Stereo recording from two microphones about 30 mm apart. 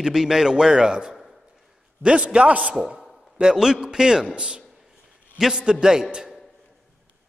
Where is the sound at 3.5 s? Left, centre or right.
Right.